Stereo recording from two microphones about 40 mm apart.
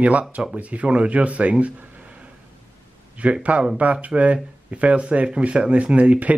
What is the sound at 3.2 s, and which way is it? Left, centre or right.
A man's voice, right.